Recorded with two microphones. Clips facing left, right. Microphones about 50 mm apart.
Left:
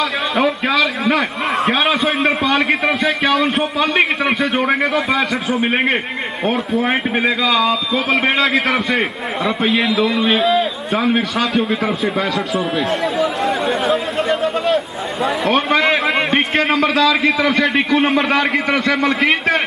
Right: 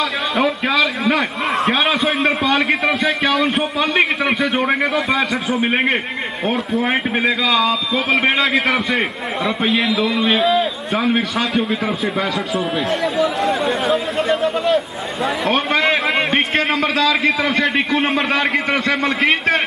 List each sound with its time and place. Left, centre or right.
0.4 s a man's voice: centre